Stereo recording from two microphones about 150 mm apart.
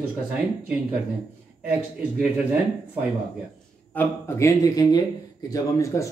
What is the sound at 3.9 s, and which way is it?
Speech, 15° left (ahead or behind).